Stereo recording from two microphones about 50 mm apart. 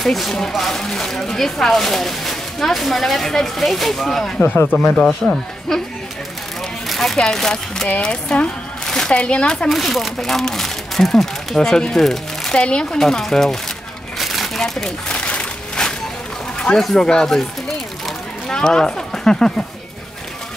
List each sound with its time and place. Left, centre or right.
0.0 s speech: centre
6.9 s a sound: centre
7.2 s speech: centre
9.7 s speech: centre
12.5 s speech: centre
14.1 s crumpling: centre
15.0 s a sound: left
16.7 s speech: centre
18.5 s speech: centre